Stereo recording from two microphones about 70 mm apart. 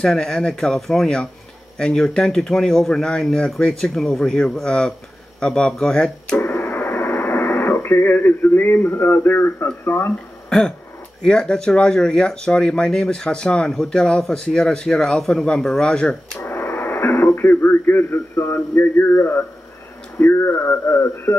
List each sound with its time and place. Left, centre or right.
0.0 s speech: centre
6.3 s radio: left
9.8 s a man's voice: left
11.2 s speech: centre
16.4 s radio: left
17.4 s a man's voice: left